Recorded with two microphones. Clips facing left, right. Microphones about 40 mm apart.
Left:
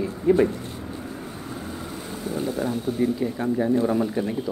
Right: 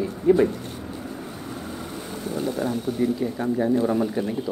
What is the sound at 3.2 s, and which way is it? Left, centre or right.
Speech, centre.